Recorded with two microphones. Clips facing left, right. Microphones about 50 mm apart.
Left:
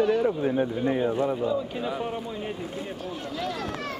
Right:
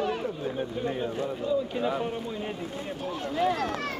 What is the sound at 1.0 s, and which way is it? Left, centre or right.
Speech, left.